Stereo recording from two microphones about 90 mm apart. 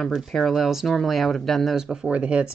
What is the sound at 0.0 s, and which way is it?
Speech, centre (ahead or behind).